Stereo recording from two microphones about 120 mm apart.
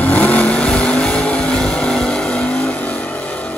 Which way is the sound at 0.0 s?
15° left (ahead or behind).